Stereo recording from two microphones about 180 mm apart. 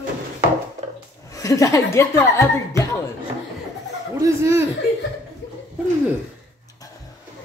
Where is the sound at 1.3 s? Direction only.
15° left (ahead or behind).